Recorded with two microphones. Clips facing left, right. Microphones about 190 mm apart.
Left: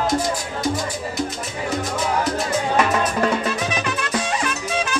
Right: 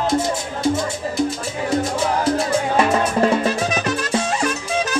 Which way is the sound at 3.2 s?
30° right (ahead or behind).